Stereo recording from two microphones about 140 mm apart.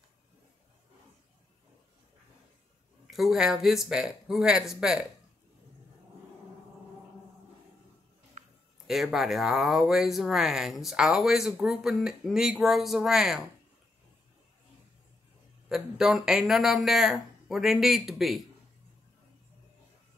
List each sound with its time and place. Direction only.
3.1 s speech: centre (ahead or behind)
8.4 s a sound: 70° right (ahead or behind)
8.8 s speech: centre (ahead or behind)
15.7 s speech: 5° right (ahead or behind)